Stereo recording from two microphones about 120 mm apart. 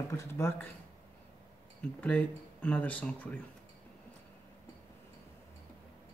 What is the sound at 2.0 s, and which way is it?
Speech, 10° left (ahead or behind).